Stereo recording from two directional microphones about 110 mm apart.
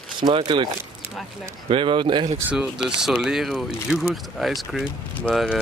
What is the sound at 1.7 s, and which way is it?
Speech, 45° right (ahead or behind).